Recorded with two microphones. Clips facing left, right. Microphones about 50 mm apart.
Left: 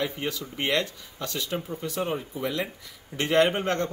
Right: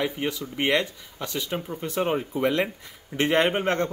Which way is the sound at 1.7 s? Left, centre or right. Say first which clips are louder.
Right 6 dB; right.